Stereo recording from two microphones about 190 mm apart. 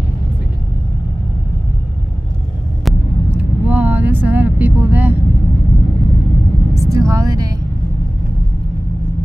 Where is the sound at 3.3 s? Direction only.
10° right (ahead or behind).